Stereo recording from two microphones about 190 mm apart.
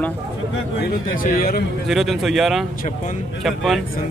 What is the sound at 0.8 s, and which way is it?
Speech, 50° left (ahead or behind).